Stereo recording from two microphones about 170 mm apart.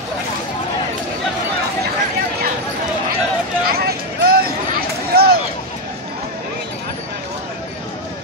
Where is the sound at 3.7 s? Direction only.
65° right (ahead or behind).